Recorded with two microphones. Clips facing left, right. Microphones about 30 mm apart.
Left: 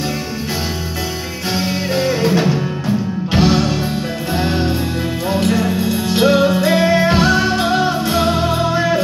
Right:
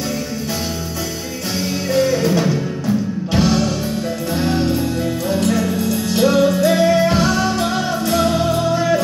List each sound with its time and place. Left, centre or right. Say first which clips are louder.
2.0 s music: even; left